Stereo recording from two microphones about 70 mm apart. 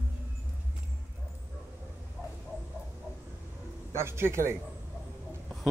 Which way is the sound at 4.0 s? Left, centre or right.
Right.